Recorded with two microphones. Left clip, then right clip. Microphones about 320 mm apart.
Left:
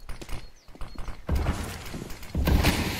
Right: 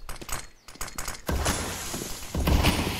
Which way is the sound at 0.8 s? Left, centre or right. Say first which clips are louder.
Right 8 dB; right.